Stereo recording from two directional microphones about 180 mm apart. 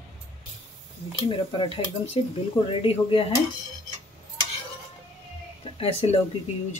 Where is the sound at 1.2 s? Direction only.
30° left (ahead or behind).